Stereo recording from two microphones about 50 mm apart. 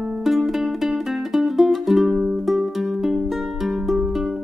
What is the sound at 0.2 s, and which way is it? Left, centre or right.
Music, centre.